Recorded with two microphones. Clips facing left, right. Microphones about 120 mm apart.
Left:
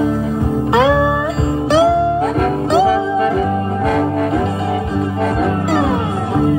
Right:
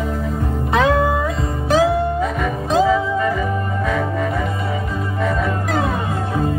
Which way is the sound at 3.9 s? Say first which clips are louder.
Left 6 dB; 60° left (ahead or behind).